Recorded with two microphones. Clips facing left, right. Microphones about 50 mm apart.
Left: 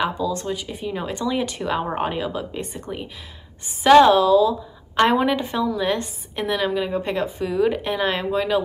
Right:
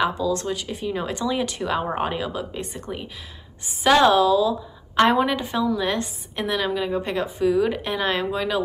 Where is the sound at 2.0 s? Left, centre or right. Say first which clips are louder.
Left 1 dB; left.